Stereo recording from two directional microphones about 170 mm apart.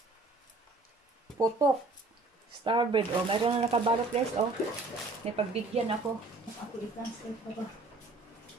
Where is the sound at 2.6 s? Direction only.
30° right (ahead or behind).